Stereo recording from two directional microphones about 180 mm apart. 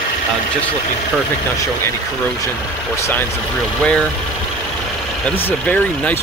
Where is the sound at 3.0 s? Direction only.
10° left (ahead or behind).